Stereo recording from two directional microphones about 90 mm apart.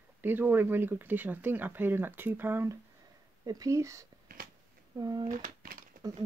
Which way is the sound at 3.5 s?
40° right (ahead or behind).